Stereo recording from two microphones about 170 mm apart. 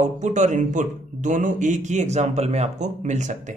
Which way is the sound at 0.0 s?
45° right (ahead or behind).